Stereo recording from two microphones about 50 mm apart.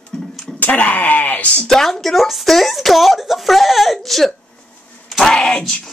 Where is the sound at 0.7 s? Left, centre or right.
Left.